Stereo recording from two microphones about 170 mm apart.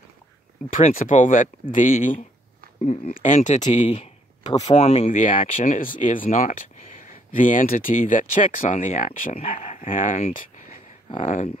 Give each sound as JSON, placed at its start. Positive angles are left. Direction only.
{"t": 0.7, "sound": "speech", "side_deg": 50}
{"t": 3.8, "sound": "a sound", "side_deg": 30}
{"t": 4.6, "sound": "speech", "side_deg": 35}
{"t": 9.3, "sound": "speech", "side_deg": 35}